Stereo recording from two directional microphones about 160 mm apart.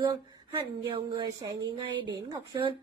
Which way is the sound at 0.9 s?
30° right (ahead or behind).